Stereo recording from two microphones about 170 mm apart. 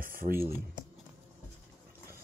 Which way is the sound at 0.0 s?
55° right (ahead or behind).